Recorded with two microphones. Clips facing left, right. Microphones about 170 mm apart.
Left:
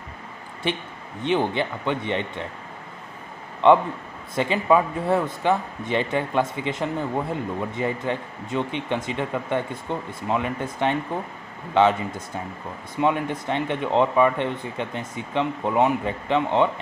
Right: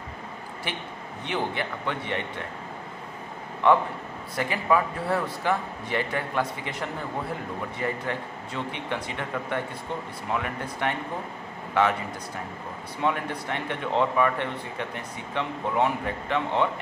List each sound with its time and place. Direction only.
1.2 s speech: 20° left (ahead or behind)
3.6 s speech: 25° left (ahead or behind)